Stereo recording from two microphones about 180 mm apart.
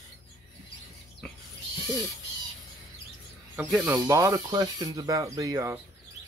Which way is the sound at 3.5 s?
5° right (ahead or behind).